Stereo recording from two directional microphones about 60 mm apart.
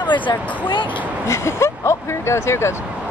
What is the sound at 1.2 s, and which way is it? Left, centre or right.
Speech, left.